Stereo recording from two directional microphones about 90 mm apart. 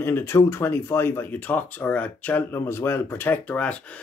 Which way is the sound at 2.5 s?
30° left (ahead or behind).